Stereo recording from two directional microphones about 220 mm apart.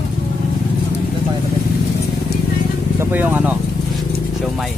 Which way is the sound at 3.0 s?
10° right (ahead or behind).